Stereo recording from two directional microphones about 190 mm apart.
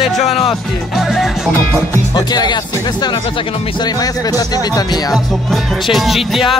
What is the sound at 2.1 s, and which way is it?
Speech, 20° left (ahead or behind).